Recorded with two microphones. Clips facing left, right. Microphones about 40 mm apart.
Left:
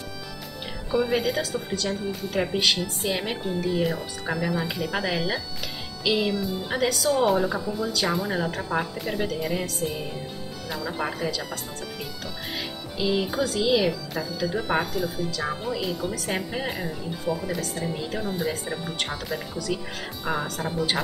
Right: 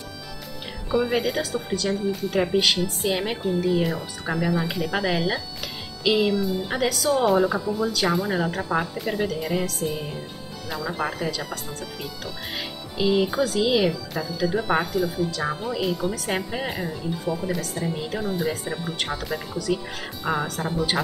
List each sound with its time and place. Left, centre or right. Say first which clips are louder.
0.9 s a woman's voice: right 1 dB; centre
13.0 s speech: right 4 dB; centre
13.3 s a woman's voice: right 1 dB; centre